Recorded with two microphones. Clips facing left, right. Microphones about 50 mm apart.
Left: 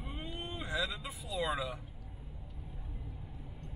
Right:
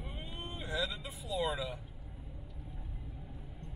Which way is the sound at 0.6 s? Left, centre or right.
Left.